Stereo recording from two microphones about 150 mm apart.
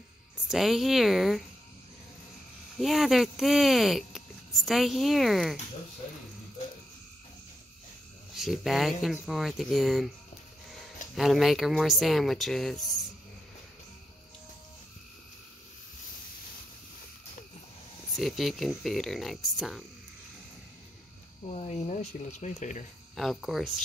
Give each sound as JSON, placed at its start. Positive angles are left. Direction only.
{"t": 0.5, "sound": "speech", "side_deg": 0}
{"t": 2.8, "sound": "speech", "side_deg": 0}
{"t": 8.4, "sound": "speech", "side_deg": 0}
{"t": 11.1, "sound": "speech", "side_deg": 0}
{"t": 18.1, "sound": "speech", "side_deg": 0}
{"t": 21.5, "sound": "speech", "side_deg": 45}
{"t": 23.1, "sound": "speech", "side_deg": 0}